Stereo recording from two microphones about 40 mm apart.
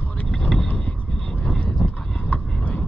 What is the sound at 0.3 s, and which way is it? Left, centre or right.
Vehicle, centre.